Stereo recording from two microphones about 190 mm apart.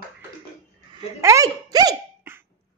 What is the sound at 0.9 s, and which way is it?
Speech, 15° right (ahead or behind).